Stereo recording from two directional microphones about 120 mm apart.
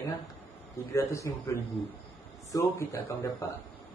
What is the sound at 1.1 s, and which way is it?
Speech, 25° left (ahead or behind).